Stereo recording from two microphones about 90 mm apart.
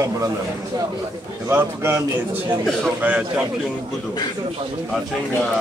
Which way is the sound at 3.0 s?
15° right (ahead or behind).